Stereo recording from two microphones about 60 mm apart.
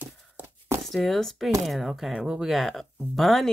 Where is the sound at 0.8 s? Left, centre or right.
Centre.